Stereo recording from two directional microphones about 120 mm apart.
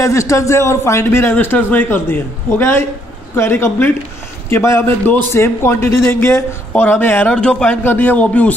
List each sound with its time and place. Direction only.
0.0 s a man's voice: 25° left (ahead or behind)